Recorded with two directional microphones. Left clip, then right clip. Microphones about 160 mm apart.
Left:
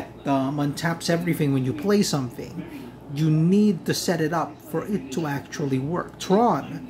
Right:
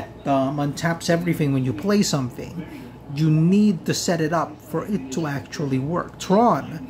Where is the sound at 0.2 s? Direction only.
5° right (ahead or behind).